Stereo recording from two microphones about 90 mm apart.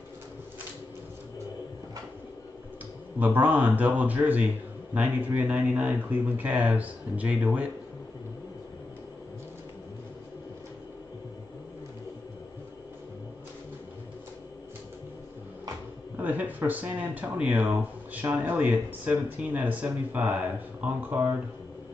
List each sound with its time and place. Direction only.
3.2 s speech: 20° right (ahead or behind)
16.2 s speech: 20° right (ahead or behind)